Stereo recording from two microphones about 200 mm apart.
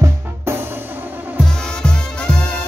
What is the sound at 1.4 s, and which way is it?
Music, 5° left (ahead or behind).